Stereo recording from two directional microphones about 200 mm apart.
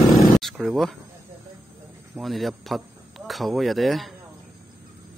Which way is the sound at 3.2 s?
Centre (ahead or behind).